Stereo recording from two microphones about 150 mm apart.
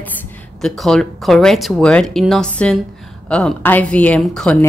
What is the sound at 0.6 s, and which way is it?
A woman's voice, 5° left (ahead or behind).